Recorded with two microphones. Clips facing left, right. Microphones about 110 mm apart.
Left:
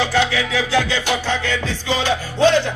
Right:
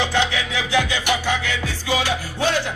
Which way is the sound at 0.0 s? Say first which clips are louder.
Left 3 dB; 20° right (ahead or behind).